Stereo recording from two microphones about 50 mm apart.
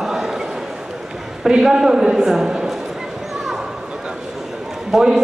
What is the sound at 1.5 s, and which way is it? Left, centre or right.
A man's voice, centre.